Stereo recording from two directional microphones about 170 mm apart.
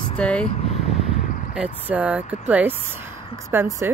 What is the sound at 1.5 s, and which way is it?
Speech, 10° right (ahead or behind).